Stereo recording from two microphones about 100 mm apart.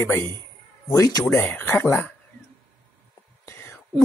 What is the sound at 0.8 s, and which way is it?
Speech, 35° left (ahead or behind).